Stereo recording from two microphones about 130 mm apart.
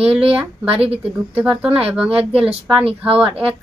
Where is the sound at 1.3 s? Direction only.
10° right (ahead or behind).